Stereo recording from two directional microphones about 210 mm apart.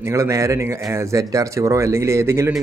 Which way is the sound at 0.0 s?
15° right (ahead or behind).